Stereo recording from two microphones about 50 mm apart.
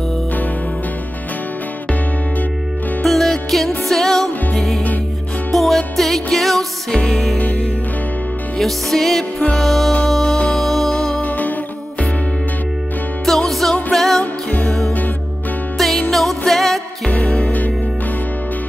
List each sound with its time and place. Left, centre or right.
3.0 s music: centre
8.5 s music: centre
11.1 s music: left
13.2 s music: centre
14.2 s music: left
16.1 s music: centre
17.2 s music: centre
17.5 s music: left